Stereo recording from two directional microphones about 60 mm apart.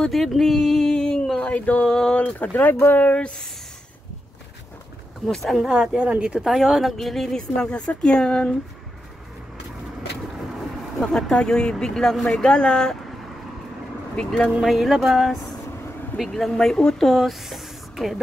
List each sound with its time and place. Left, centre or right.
0.1 s speech: centre
1.4 s a sound: left
1.9 s speech: centre
2.1 s a sound: left
2.5 s speech: left
3.0 s speech: left
5.2 s speech: centre
5.6 s a woman's voice: centre
6.4 s speech: centre
11.0 s speech: centre
14.1 s speech: centre
14.6 s speech: centre
16.3 s speech: centre
17.1 s speech: centre